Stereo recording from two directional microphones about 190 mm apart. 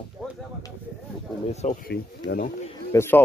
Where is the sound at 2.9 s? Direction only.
10° left (ahead or behind).